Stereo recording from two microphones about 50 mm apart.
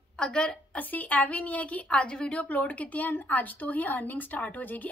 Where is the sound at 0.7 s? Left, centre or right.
Left.